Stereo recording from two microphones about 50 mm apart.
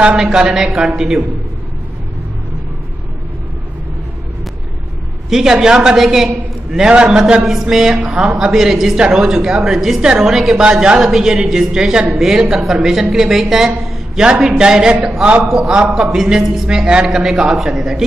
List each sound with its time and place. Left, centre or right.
0.2 s a man's voice: centre
5.3 s a man's voice: centre
5.9 s a man's voice: centre
12.1 s a woman's voice: centre
17.1 s a woman's voice: centre